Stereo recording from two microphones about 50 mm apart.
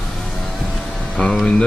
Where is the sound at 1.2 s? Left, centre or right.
Centre.